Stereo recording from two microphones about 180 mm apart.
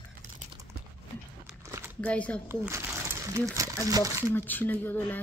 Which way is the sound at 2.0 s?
5° left (ahead or behind).